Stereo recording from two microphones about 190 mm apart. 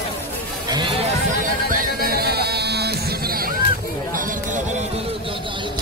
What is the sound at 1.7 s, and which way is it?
Music, 50° right (ahead or behind).